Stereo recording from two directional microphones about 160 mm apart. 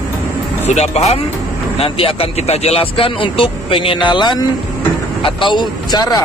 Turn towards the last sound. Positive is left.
turn(degrees=25)  # may be behind; listen again after turning